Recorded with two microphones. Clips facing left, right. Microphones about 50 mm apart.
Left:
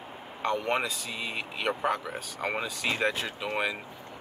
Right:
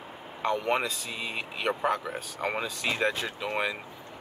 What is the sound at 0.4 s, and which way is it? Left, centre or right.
Speech, centre.